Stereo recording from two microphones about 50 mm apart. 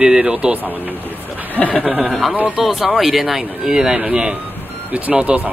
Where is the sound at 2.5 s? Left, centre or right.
Centre.